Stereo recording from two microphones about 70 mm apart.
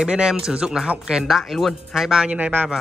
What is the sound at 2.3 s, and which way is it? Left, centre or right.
Speech, right.